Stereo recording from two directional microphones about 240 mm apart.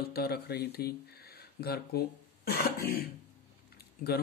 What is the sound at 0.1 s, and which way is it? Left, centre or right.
Speech, left.